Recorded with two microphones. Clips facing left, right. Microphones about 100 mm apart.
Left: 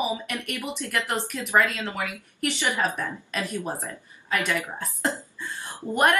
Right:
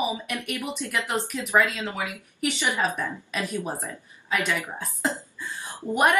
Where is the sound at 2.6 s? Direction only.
20° right (ahead or behind).